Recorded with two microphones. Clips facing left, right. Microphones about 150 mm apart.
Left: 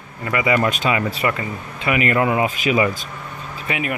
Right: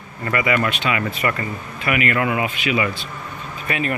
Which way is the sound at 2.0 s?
35° left (ahead or behind).